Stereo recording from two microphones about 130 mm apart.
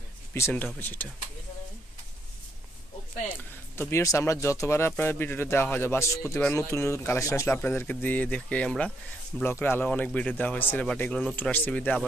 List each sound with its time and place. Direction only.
0.3 s speech: 15° left (ahead or behind)
3.3 s speech: 15° left (ahead or behind)